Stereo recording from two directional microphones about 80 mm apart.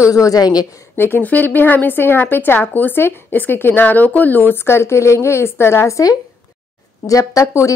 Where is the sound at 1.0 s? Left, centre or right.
Left.